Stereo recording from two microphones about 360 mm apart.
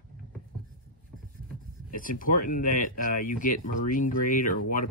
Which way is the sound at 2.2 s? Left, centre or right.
Left.